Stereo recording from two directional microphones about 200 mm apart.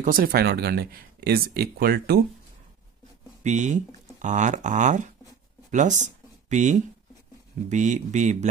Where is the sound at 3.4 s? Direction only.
35° right (ahead or behind).